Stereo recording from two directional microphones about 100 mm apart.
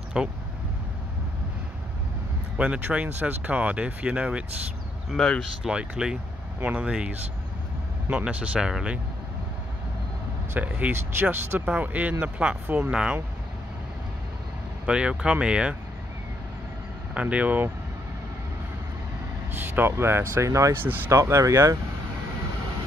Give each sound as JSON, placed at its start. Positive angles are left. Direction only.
{"t": 0.2, "sound": "speech", "side_deg": -5}
{"t": 2.5, "sound": "speech", "side_deg": -10}
{"t": 5.1, "sound": "speech", "side_deg": 5}
{"t": 5.6, "sound": "speech", "side_deg": -10}
{"t": 10.5, "sound": "speech", "side_deg": -15}
{"t": 14.9, "sound": "speech", "side_deg": -10}
{"t": 17.1, "sound": "speech", "side_deg": -10}
{"t": 19.5, "sound": "speech", "side_deg": -20}
{"t": 20.8, "sound": "speech", "side_deg": -20}